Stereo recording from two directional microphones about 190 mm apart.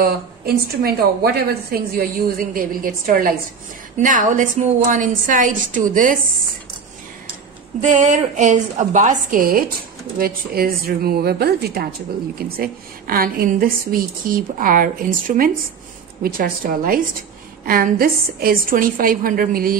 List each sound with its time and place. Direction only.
0.0 s a woman's voice: 55° right (ahead or behind)
7.8 s a woman's voice: 40° right (ahead or behind)